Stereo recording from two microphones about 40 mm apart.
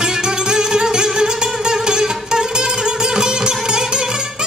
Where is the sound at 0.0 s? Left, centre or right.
Centre.